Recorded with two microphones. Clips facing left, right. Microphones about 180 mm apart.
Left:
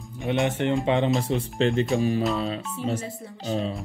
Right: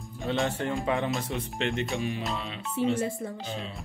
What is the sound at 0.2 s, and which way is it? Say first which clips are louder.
Speech: left 4 dB; 20° left (ahead or behind).